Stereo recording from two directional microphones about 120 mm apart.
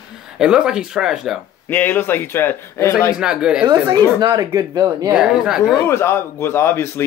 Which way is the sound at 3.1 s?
5° right (ahead or behind).